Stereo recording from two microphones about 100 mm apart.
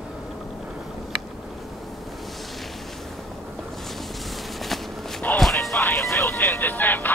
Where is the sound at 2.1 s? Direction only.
Centre (ahead or behind).